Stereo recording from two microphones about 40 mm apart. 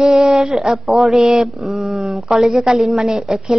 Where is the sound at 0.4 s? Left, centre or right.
Centre.